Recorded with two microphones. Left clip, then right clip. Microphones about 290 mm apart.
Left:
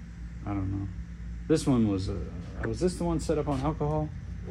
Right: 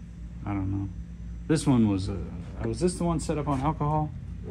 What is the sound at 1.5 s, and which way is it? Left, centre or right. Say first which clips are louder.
Speech: right 1 dB; right.